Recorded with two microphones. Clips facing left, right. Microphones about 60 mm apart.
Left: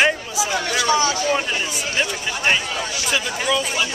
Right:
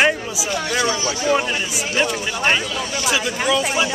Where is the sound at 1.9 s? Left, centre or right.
Centre.